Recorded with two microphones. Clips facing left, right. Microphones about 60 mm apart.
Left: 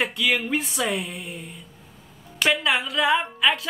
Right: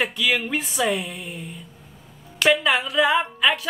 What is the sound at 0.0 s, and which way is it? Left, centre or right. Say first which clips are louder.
A woman's voice: right 1 dB; centre.